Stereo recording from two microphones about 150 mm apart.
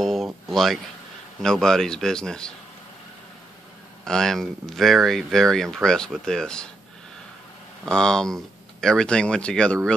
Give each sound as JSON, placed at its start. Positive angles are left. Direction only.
{"t": 0.0, "sound": "a sound", "side_deg": 0}
{"t": 1.4, "sound": "speech", "side_deg": 5}
{"t": 4.0, "sound": "speech", "side_deg": 5}
{"t": 7.8, "sound": "speech", "side_deg": 5}